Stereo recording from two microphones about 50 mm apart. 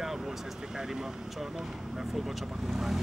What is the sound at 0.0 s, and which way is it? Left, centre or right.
Speech, centre.